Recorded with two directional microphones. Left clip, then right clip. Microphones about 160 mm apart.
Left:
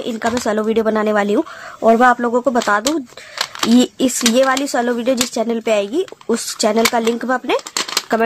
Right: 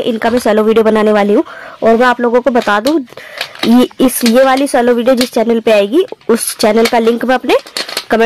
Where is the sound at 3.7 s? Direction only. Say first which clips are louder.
Right 5 dB; 40° right (ahead or behind).